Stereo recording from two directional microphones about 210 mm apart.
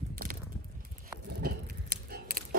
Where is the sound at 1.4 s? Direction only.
45° right (ahead or behind).